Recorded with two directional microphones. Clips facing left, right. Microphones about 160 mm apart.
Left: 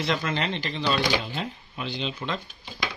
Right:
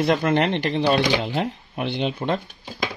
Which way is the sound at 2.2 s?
50° right (ahead or behind).